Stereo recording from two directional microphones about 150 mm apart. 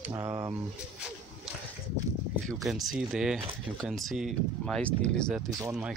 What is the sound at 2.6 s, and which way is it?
Speech, centre (ahead or behind).